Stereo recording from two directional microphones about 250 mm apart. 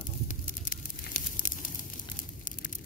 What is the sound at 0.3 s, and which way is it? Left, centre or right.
Crumpling, left.